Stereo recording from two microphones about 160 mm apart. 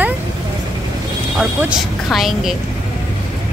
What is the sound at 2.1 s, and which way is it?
Speech, centre (ahead or behind).